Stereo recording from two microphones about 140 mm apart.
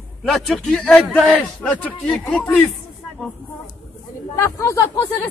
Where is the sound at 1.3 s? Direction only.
10° left (ahead or behind).